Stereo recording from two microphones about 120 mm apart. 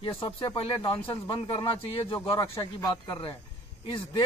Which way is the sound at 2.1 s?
25° left (ahead or behind).